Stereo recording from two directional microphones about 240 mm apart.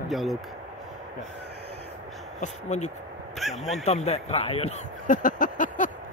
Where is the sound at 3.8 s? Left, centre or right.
Left.